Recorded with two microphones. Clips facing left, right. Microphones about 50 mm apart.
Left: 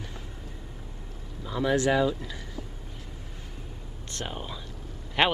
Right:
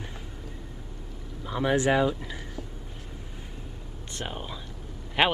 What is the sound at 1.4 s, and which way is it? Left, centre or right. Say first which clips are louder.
Speech: even; right.